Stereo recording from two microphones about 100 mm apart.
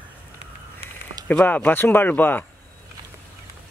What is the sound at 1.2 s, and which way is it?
Speech, 15° left (ahead or behind).